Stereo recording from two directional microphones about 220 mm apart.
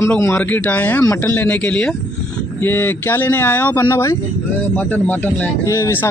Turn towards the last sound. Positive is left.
turn(degrees=15)  # may be behind; listen again after turning